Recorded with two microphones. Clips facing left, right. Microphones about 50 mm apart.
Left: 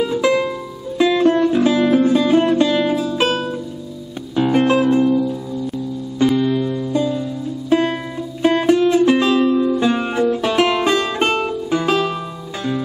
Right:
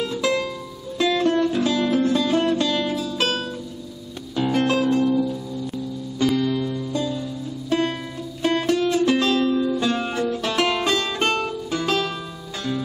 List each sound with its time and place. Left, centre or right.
0.0 s music: centre